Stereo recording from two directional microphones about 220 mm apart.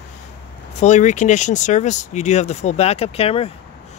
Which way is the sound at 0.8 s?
30° left (ahead or behind).